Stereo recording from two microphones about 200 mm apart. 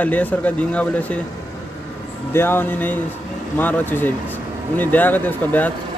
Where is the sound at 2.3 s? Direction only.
10° left (ahead or behind).